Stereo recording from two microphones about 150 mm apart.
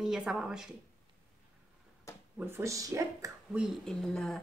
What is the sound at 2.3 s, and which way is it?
Speech, 15° right (ahead or behind).